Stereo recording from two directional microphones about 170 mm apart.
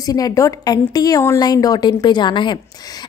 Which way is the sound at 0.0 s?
20° left (ahead or behind).